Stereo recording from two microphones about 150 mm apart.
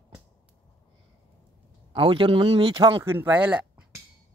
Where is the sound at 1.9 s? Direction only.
35° right (ahead or behind).